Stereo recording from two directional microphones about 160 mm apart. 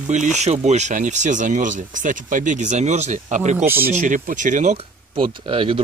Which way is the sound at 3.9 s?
50° right (ahead or behind).